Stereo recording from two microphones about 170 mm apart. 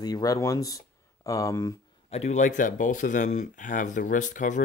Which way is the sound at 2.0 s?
40° left (ahead or behind).